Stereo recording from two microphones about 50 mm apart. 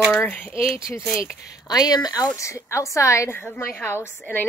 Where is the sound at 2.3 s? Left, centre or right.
Left.